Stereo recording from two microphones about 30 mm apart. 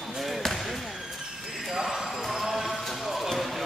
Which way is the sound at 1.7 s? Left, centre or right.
Centre.